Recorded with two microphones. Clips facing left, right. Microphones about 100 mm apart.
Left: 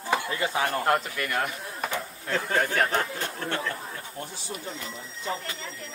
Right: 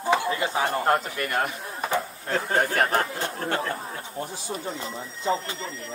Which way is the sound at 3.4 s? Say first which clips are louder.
Right 4 dB; 35° right (ahead or behind).